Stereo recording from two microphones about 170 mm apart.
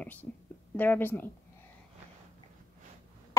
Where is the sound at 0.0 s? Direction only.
10° left (ahead or behind).